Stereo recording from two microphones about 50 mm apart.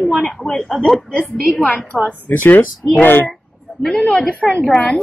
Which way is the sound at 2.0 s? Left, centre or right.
Left.